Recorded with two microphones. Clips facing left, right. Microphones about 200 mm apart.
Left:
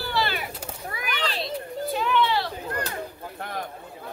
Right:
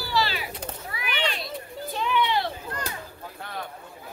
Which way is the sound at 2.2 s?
15° right (ahead or behind).